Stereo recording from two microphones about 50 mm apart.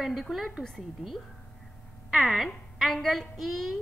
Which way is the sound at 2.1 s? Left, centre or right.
Centre.